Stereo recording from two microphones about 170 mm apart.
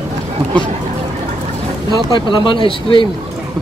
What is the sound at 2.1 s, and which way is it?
Speech, 30° left (ahead or behind).